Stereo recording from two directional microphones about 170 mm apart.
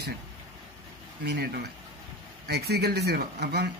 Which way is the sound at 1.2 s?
75° right (ahead or behind).